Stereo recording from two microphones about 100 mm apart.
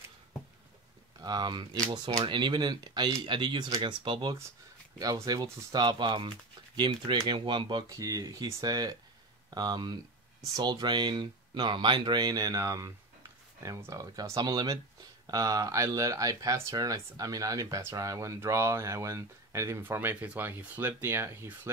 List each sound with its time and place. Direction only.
1.2 s speech: 45° right (ahead or behind)
4.9 s speech: 40° right (ahead or behind)
7.9 s speech: 35° right (ahead or behind)